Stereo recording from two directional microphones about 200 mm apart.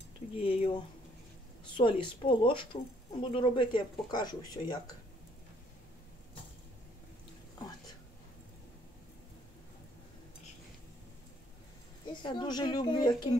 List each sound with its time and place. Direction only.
0.4 s speech: 25° left (ahead or behind)
1.8 s speech: 25° left (ahead or behind)
12.1 s speech: 25° left (ahead or behind)